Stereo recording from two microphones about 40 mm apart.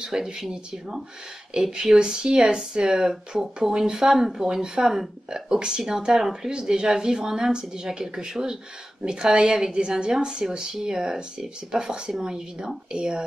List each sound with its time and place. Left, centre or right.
0.0 s speech: centre